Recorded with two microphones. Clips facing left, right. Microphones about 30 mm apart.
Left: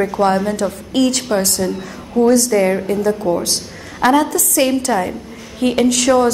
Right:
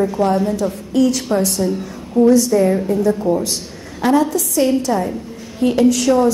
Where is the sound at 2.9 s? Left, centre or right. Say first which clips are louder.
Even; left.